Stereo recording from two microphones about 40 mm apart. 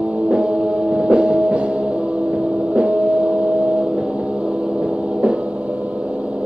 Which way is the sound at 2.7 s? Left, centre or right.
Right.